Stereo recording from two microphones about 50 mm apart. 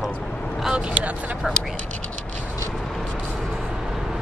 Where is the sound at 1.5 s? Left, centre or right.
Centre.